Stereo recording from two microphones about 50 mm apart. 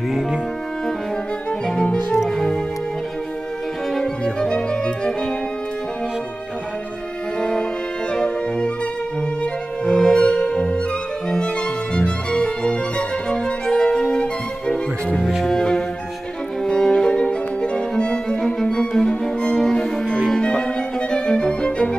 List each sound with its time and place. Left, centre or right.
2.2 s music: centre
3.9 s music: centre
7.3 s music: centre
9.8 s music: centre
10.1 s music: centre
11.2 s violin: centre
15.4 s music: centre
21.1 s violin: centre